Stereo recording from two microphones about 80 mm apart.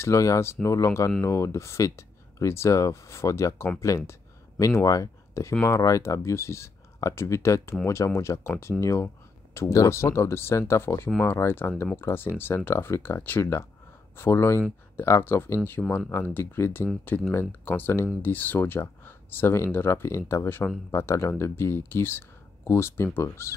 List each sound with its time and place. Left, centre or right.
0.0 s speech: left